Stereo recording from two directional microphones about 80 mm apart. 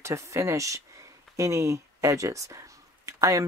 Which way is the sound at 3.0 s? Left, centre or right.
Right.